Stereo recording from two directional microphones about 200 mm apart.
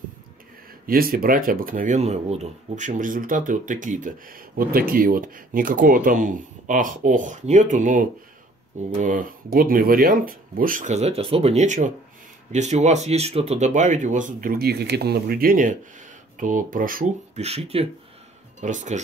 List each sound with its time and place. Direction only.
0.8 s speech: 45° right (ahead or behind)
17.5 s speech: 30° right (ahead or behind)